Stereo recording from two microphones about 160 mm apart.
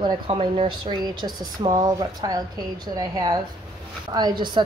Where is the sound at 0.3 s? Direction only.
35° right (ahead or behind).